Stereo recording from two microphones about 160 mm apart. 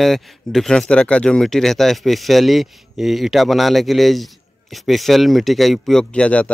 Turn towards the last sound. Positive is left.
turn(degrees=10)  # may be behind; listen again after turning